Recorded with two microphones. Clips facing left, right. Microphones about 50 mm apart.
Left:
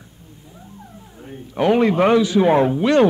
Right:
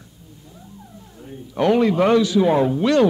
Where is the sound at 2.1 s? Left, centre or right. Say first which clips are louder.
Left 1 dB; left.